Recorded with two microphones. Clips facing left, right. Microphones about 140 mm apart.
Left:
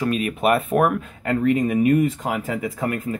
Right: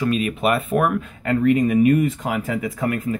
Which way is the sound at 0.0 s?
45° left (ahead or behind).